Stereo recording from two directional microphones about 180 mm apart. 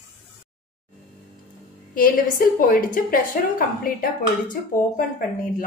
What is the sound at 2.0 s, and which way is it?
A woman's voice, 50° left (ahead or behind).